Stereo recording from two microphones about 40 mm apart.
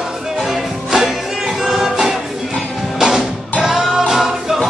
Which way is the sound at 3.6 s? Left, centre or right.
Centre.